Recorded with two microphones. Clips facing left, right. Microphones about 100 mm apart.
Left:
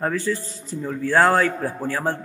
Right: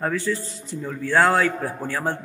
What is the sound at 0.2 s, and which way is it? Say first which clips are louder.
A man's voice: left 1 dB; 35° left (ahead or behind).